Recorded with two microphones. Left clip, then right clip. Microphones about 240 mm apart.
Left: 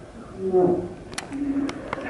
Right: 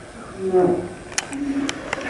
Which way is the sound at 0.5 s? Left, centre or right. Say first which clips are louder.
Right 2 dB; centre.